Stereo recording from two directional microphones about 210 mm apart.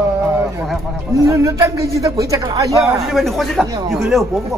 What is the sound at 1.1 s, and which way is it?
A man's voice, 15° right (ahead or behind).